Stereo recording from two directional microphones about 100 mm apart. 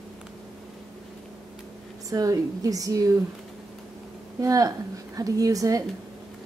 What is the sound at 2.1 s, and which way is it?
A woman's voice, 35° right (ahead or behind).